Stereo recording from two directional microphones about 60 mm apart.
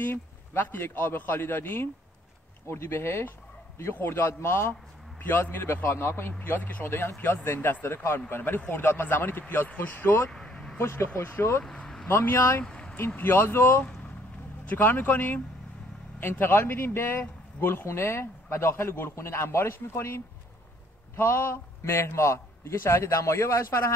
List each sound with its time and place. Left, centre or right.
0.0 s a man's voice: left
4.0 s a man's voice: left
4.3 s a man's voice: left
10.3 s vehicle: centre
10.8 s a man's voice: left
11.6 s a sound: centre
12.1 s a man's voice: left
12.6 s a sound: centre
13.1 s a man's voice: left
21.2 s a man's voice: left